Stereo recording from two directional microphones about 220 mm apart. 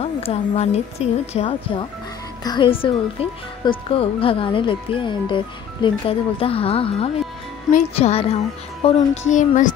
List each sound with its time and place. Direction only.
0.0 s speech: 30° left (ahead or behind)